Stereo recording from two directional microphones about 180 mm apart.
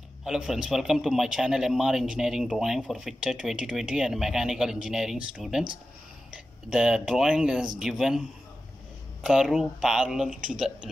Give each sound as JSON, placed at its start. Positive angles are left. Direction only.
{"t": 0.2, "sound": "a man's voice", "side_deg": -5}
{"t": 9.2, "sound": "a man's voice", "side_deg": -5}